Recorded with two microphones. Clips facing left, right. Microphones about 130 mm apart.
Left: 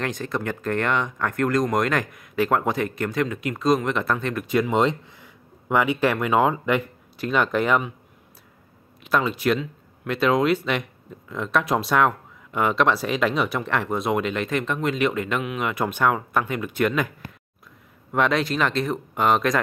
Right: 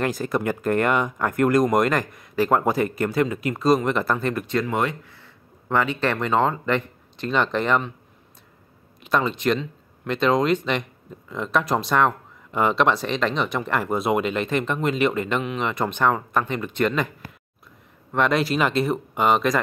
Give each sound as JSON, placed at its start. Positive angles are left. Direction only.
{"t": 0.0, "sound": "speech", "side_deg": -5}
{"t": 4.5, "sound": "speech", "side_deg": 15}
{"t": 9.0, "sound": "speech", "side_deg": 5}
{"t": 18.1, "sound": "speech", "side_deg": 0}